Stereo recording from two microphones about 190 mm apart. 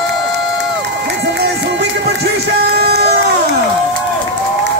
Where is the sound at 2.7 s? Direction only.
60° right (ahead or behind).